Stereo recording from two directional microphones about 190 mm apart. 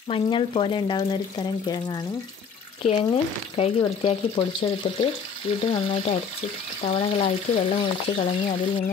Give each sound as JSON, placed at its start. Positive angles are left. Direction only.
{"t": 0.1, "sound": "speech", "side_deg": 25}